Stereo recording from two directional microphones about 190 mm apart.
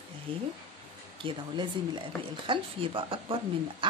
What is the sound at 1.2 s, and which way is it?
Speech, 25° right (ahead or behind).